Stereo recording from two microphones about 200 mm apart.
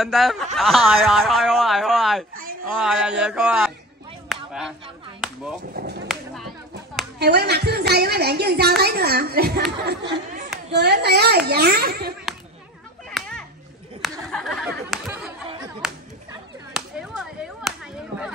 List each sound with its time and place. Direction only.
0.0 s a man's voice: centre (ahead or behind)
4.3 s honk: centre (ahead or behind)
5.2 s chop: 5° right (ahead or behind)
5.8 s speech: 55° right (ahead or behind)
7.2 s a woman's voice: 55° right (ahead or behind)
13.2 s chop: centre (ahead or behind)
14.3 s a man's voice: centre (ahead or behind)
15.0 s chatter: 5° right (ahead or behind)
15.8 s a sound: 5° right (ahead or behind)
16.7 s clapping: centre (ahead or behind)